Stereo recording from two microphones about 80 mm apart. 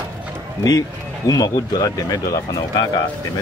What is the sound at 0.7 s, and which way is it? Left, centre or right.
Speech, left.